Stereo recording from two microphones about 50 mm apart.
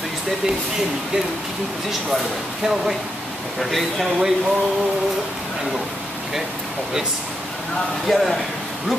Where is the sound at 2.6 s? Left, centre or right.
Centre.